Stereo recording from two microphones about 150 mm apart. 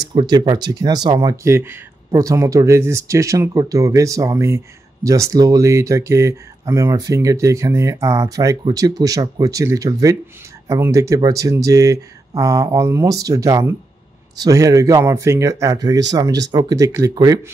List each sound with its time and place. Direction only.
0.1 s speech: 30° right (ahead or behind)